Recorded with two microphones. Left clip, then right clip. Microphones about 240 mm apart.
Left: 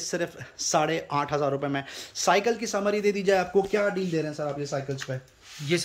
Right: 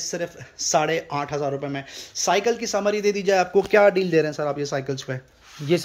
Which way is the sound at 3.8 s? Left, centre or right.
Centre.